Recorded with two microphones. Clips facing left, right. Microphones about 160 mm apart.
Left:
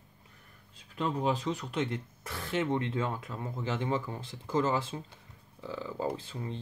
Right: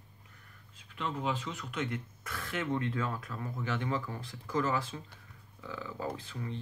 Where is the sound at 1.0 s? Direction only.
35° left (ahead or behind).